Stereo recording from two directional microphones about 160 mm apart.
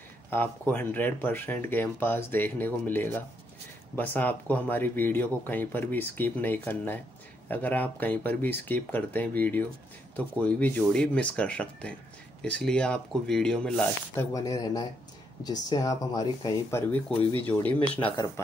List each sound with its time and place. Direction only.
0.3 s speech: 15° left (ahead or behind)
14.3 s speech: 20° left (ahead or behind)
17.4 s speech: 10° left (ahead or behind)
17.9 s speech: 30° left (ahead or behind)